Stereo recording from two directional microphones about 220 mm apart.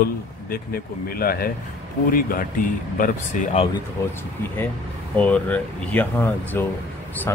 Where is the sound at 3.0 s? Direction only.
30° left (ahead or behind).